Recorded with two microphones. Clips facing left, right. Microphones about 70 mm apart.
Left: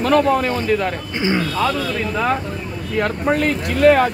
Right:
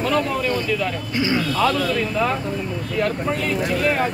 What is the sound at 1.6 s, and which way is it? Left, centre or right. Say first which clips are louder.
Speech: right 3 dB; centre.